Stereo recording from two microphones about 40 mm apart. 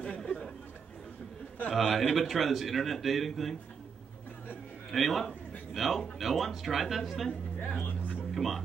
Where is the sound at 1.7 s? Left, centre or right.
Centre.